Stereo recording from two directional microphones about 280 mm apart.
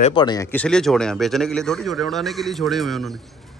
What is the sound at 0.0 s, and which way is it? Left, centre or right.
A man's voice, centre.